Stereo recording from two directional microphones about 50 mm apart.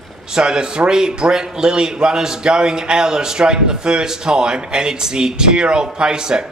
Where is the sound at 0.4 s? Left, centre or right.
Centre.